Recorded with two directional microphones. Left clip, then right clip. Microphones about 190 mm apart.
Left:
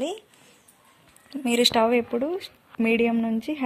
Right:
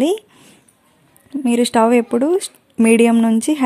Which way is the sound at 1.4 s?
30° right (ahead or behind).